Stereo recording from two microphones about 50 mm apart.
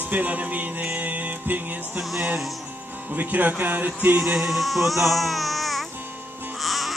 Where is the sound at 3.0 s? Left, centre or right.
Right.